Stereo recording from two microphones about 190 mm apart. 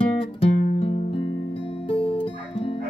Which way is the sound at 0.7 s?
30° left (ahead or behind).